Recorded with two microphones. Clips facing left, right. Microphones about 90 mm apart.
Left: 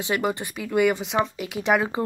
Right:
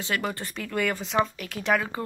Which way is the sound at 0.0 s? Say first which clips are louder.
Left 5 dB; 20° left (ahead or behind).